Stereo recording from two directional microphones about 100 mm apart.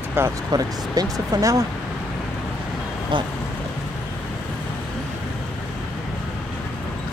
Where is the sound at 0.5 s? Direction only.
40° right (ahead or behind).